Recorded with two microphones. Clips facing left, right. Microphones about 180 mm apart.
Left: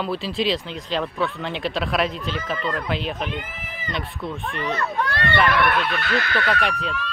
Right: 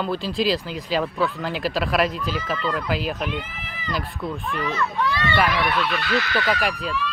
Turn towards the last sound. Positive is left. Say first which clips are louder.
# even
turn(degrees=-5)  # may be behind; listen again after turning